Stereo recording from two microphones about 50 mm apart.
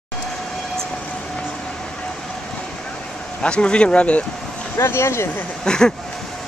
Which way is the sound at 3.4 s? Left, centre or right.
Left.